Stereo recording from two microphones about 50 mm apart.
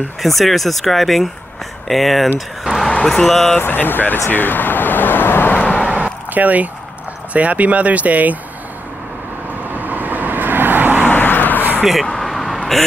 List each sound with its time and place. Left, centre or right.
0.2 s speech: centre
2.6 s a sound: centre
3.3 s speech: centre
3.5 s speech: left
4.3 s vehicle: left
5.8 s a sound: right
7.3 s speech: right
9.7 s vehicle: right
11.1 s vehicle: left
11.8 s speech: centre
12.2 s vehicle: centre